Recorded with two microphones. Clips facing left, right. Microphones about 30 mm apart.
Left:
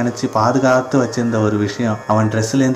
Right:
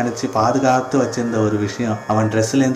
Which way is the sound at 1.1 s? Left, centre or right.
Left.